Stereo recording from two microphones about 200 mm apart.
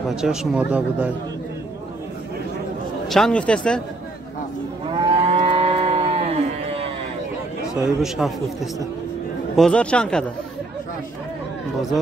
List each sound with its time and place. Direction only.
0.1 s speech: 5° right (ahead or behind)
3.1 s speech: 5° left (ahead or behind)
4.9 s livestock: 25° right (ahead or behind)
8.0 s speech: centre (ahead or behind)